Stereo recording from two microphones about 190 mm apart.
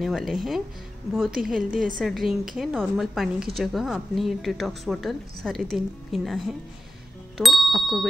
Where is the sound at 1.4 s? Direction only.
Centre (ahead or behind).